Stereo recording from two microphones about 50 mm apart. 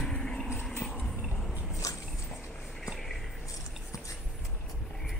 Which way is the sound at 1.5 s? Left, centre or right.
Right.